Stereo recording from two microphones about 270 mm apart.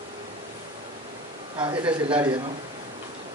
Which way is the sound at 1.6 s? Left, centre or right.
Centre.